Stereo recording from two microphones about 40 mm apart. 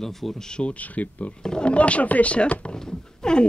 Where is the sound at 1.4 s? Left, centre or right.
Centre.